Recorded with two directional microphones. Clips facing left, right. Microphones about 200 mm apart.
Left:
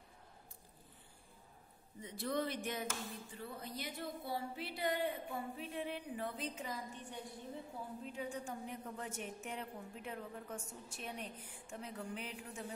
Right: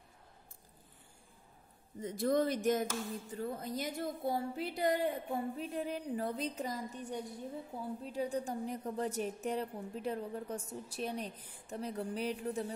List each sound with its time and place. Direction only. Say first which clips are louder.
2.0 s a woman's voice: right 8 dB; 45° right (ahead or behind)